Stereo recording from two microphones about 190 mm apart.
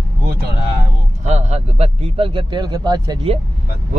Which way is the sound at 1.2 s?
35° right (ahead or behind).